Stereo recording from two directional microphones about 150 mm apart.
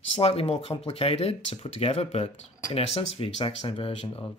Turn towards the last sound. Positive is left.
turn(degrees=40)  # may be behind; listen again after turning